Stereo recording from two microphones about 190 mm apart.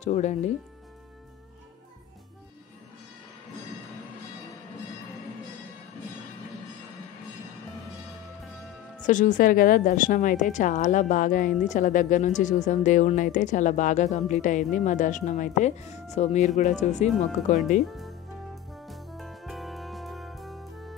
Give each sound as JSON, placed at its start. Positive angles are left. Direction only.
{"t": 0.0, "sound": "speech", "side_deg": 40}
{"t": 9.0, "sound": "a woman's voice", "side_deg": 40}
{"t": 17.8, "sound": "music", "side_deg": 0}